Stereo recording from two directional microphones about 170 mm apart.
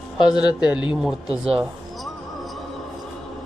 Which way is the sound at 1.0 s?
5° right (ahead or behind).